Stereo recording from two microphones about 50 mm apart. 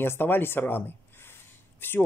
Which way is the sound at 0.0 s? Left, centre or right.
Left.